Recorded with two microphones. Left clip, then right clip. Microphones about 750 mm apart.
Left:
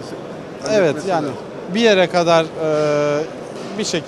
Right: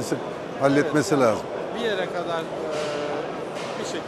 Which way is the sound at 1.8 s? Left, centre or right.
Left.